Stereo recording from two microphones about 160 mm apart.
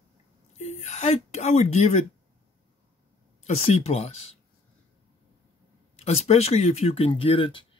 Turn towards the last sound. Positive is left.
turn(degrees=35)  # may be behind; listen again after turning